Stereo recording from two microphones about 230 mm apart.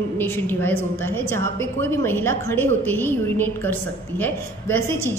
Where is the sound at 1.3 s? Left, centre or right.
Right.